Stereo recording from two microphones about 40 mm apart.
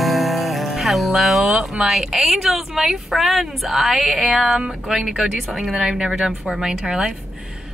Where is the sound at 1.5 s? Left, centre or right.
Centre.